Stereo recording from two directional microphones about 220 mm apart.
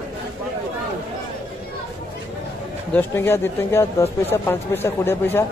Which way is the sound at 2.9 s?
10° left (ahead or behind).